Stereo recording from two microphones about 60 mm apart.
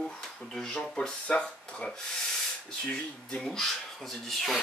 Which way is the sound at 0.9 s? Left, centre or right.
Centre.